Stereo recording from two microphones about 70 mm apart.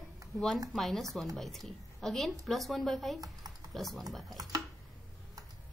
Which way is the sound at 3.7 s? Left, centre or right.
Centre.